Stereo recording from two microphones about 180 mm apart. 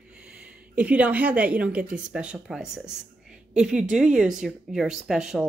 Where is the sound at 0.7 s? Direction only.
10° right (ahead or behind).